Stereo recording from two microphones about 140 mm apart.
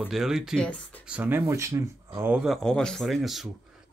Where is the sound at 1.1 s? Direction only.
15° right (ahead or behind).